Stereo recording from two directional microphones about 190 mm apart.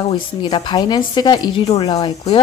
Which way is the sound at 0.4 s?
25° left (ahead or behind).